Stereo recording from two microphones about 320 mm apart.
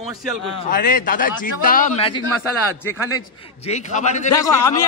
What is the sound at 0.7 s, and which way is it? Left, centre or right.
A man's voice, left.